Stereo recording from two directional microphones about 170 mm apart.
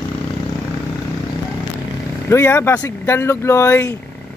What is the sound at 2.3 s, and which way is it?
Speech, 15° left (ahead or behind).